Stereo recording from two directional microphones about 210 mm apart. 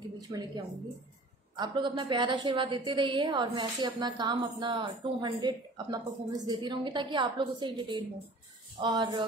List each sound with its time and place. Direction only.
0.3 s a woman's voice: 15° right (ahead or behind)